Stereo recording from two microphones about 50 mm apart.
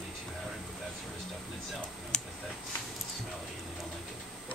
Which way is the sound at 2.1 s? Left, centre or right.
Centre.